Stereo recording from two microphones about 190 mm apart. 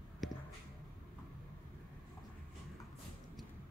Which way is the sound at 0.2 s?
Centre (ahead or behind).